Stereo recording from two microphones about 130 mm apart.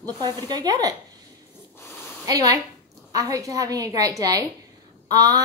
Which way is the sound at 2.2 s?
25° right (ahead or behind).